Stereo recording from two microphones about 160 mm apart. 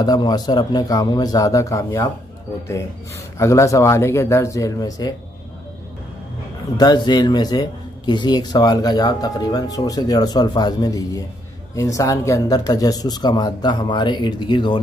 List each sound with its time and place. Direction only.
0.0 s speech: 25° left (ahead or behind)
3.3 s speech: 20° left (ahead or behind)
6.8 s speech: 25° left (ahead or behind)